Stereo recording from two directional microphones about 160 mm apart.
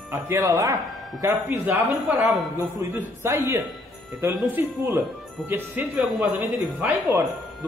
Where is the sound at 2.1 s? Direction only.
Centre (ahead or behind).